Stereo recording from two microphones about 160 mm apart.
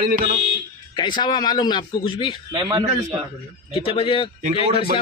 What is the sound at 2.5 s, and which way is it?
Speech, 30° right (ahead or behind).